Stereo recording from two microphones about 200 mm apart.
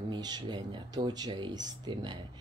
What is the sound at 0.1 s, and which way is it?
Speech, 20° right (ahead or behind).